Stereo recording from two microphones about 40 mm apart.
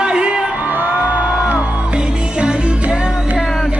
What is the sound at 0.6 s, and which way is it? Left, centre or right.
Music, right.